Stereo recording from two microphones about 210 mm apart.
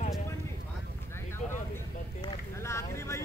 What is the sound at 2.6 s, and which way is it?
Vehicle, 15° left (ahead or behind).